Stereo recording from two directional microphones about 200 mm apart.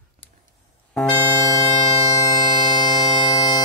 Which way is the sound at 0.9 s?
10° left (ahead or behind).